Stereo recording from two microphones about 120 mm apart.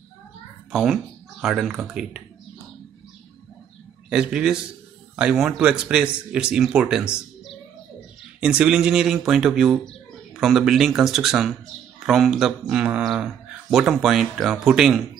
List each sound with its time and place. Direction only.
0.7 s a child's voice: 5° right (ahead or behind)
4.1 s speech: 5° right (ahead or behind)